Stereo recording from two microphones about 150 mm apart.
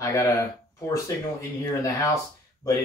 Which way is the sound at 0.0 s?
20° left (ahead or behind).